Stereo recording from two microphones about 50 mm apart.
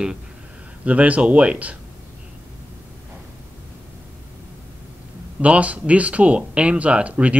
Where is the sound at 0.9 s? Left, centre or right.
Right.